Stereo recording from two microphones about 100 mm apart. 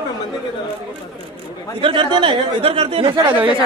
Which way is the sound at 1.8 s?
60° right (ahead or behind).